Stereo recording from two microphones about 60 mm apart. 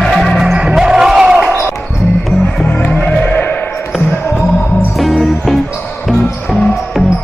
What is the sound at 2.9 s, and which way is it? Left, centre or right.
Music, left.